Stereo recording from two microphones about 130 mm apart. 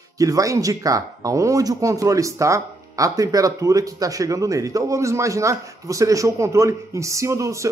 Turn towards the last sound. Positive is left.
turn(degrees=-25)  # may be behind; listen again after turning